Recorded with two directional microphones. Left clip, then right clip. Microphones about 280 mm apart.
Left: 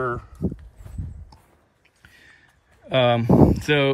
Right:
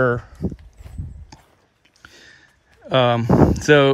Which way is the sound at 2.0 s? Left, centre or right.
Centre.